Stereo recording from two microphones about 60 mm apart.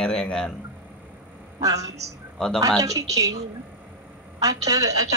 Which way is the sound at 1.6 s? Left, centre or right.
Right.